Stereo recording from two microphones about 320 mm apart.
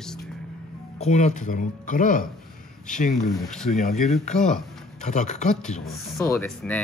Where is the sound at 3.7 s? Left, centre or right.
Left.